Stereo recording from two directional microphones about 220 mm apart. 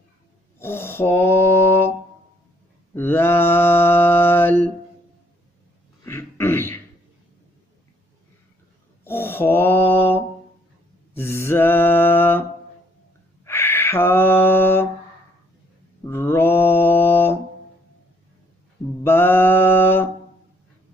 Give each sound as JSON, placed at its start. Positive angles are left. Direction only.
{"t": 0.6, "sound": "mantra", "side_deg": 10}
{"t": 2.9, "sound": "mantra", "side_deg": 10}
{"t": 6.0, "sound": "a sound", "side_deg": 10}
{"t": 9.0, "sound": "mantra", "side_deg": 10}
{"t": 13.5, "sound": "a sound", "side_deg": 10}
{"t": 16.1, "sound": "mantra", "side_deg": 10}
{"t": 19.0, "sound": "mantra", "side_deg": 10}